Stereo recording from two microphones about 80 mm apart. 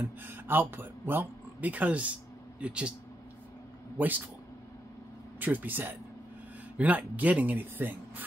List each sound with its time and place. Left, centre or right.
0.0 s speech: right
4.0 s speech: right
5.4 s speech: right